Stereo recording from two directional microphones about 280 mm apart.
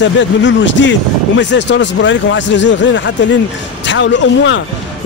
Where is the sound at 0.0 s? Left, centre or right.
Left.